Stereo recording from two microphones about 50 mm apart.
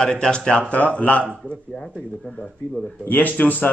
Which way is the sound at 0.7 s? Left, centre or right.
Left.